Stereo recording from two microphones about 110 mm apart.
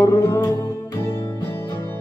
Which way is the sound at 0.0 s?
20° left (ahead or behind).